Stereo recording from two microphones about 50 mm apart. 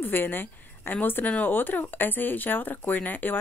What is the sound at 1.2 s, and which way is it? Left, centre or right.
Speech, left.